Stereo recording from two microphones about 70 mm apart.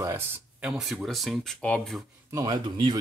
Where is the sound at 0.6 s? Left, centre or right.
Centre.